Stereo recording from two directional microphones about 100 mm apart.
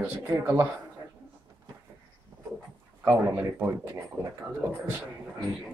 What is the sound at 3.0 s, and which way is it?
Speech, 20° right (ahead or behind).